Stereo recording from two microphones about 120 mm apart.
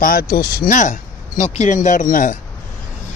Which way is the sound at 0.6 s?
90° left.